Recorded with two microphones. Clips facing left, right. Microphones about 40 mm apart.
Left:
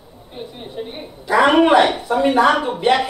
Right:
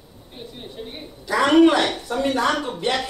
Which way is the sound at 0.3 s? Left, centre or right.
Centre.